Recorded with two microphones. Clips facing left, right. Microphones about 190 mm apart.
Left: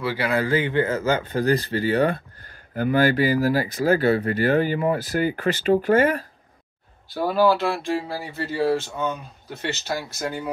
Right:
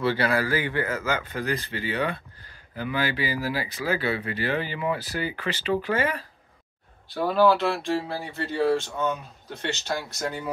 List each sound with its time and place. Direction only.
0.0 s speech: 10° left (ahead or behind)
0.3 s speech: 20° left (ahead or behind); by 6.2 s 50° left (ahead or behind)
7.1 s speech: 5° left (ahead or behind)